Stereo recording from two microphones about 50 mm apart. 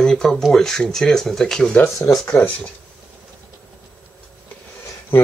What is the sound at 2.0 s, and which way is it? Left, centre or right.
Speech, left.